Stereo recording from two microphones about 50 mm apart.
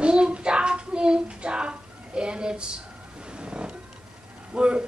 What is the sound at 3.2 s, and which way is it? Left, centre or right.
Wild animals, centre.